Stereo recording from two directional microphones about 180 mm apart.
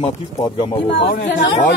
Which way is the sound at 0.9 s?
75° left (ahead or behind).